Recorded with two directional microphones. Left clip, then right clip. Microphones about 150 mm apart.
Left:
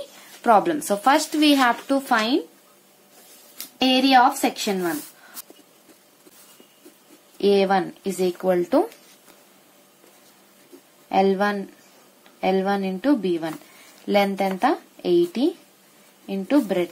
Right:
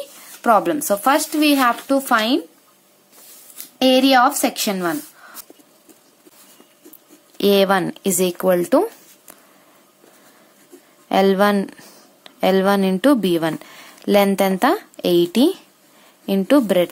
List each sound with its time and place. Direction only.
0.4 s speech: 25° right (ahead or behind)
3.8 s a woman's voice: 40° right (ahead or behind)
7.3 s speech: 60° right (ahead or behind); by 8.8 s 45° right (ahead or behind)
11.1 s speech: 65° right (ahead or behind)